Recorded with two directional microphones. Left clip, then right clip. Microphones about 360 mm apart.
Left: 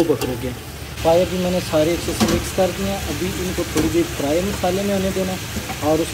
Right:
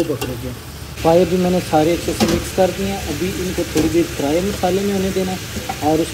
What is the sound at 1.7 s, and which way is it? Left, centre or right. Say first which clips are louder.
Speech: right 2 dB; centre.